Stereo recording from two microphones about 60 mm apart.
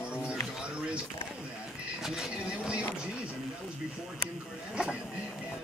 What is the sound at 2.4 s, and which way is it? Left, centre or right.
Speech, centre.